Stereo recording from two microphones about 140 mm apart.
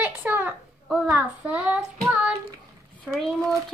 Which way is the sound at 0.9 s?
5° right (ahead or behind).